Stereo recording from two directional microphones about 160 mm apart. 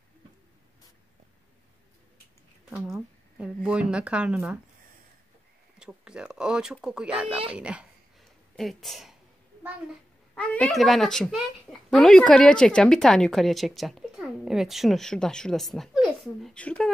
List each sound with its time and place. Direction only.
2.7 s a woman's voice: 5° right (ahead or behind)
5.8 s a woman's voice: 5° right (ahead or behind)
7.5 s a sound: 5° right (ahead or behind)
10.3 s a woman's voice: 5° left (ahead or behind)